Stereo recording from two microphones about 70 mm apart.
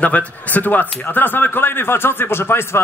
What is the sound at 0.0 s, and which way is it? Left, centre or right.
A man's voice, left.